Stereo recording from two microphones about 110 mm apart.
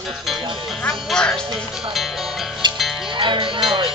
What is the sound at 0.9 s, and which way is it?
Speech, 5° left (ahead or behind).